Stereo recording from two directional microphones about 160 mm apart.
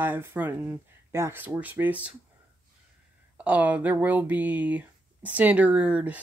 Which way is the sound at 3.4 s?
10° right (ahead or behind).